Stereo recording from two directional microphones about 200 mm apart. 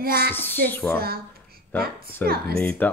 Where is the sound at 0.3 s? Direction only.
10° left (ahead or behind).